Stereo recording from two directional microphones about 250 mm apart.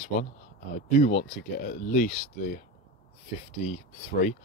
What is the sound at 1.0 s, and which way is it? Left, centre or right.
Speech, left.